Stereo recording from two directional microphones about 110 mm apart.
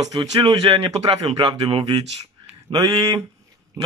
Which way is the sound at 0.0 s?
35° right (ahead or behind).